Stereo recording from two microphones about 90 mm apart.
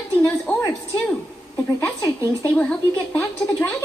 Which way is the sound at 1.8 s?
40° left (ahead or behind).